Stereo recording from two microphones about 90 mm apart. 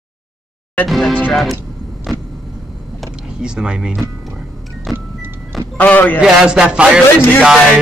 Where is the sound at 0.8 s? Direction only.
Centre (ahead or behind).